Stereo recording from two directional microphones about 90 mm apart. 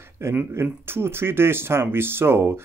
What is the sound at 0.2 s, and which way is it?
Speech, 25° right (ahead or behind).